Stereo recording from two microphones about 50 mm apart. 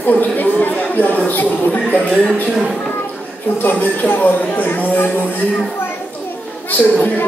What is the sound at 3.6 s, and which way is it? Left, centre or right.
Speech, left.